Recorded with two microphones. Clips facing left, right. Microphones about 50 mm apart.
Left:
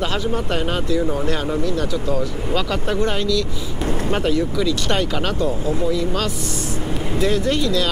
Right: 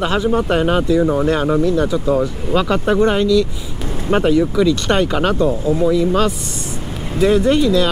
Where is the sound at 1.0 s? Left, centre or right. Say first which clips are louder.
Right 6 dB; right.